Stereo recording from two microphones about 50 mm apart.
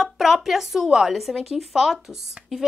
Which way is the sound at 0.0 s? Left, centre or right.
Centre.